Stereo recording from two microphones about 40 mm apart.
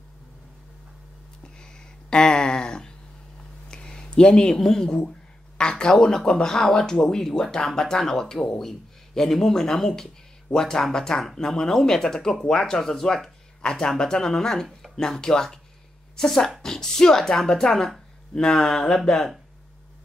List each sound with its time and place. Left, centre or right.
1.4 s a sound: left
4.6 s speech: centre
13.6 s speech: centre